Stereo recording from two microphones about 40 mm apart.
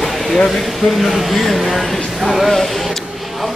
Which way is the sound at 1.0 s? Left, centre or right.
Centre.